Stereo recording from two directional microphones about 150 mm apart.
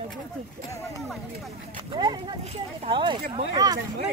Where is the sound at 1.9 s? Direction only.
30° right (ahead or behind).